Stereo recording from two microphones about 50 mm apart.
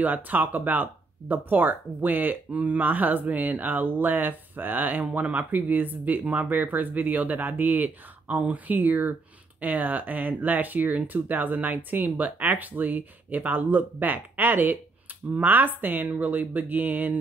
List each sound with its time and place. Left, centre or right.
0.0 s speech: right